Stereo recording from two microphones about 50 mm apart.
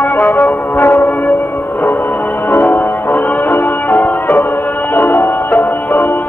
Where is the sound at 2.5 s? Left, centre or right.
Left.